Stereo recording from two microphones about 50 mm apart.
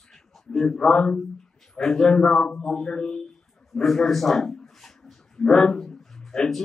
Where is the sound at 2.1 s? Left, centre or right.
Centre.